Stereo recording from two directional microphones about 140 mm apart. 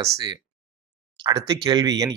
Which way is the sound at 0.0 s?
25° right (ahead or behind).